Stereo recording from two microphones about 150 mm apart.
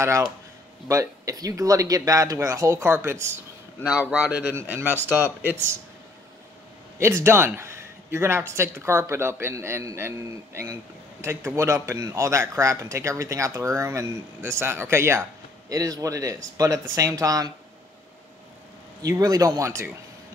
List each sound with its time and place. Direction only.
0.0 s speech: 20° right (ahead or behind)
7.0 s speech: 20° right (ahead or behind)
19.0 s speech: 25° right (ahead or behind)